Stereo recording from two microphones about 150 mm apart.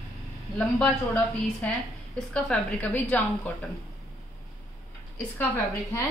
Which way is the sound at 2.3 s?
5° left (ahead or behind).